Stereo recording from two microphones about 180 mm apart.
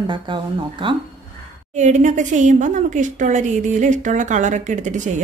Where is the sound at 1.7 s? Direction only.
40° right (ahead or behind).